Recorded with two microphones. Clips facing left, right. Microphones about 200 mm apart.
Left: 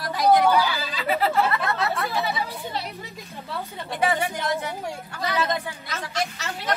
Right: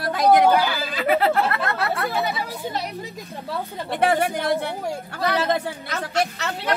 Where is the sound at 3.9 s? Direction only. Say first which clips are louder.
Right 4 dB; 60° right (ahead or behind).